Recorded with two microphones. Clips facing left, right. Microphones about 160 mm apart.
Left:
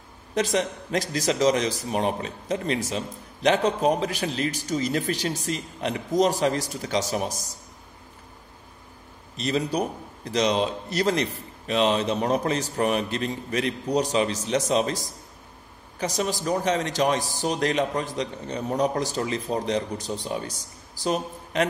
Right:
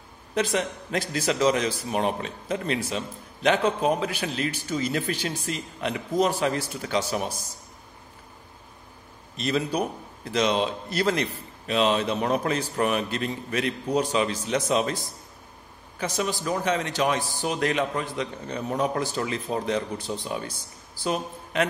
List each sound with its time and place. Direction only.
0.3 s a man's voice: 40° left (ahead or behind)
9.4 s a man's voice: 40° left (ahead or behind)